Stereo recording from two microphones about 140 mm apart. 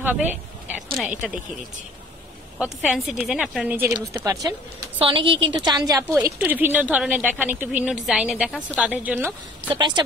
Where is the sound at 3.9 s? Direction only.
25° right (ahead or behind).